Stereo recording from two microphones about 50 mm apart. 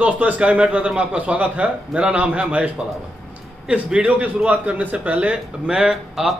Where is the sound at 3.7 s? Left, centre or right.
Right.